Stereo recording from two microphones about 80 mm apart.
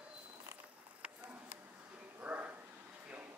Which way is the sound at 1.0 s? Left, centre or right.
Right.